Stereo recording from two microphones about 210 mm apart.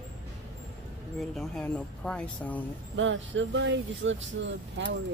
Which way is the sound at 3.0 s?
65° right (ahead or behind).